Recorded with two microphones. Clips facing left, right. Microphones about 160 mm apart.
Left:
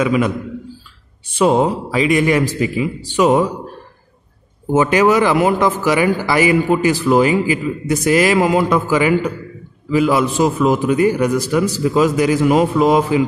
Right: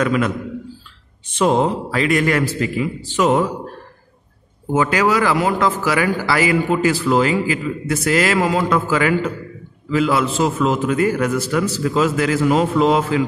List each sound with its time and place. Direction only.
0.0 s speech: 10° left (ahead or behind)
4.7 s speech: 20° left (ahead or behind)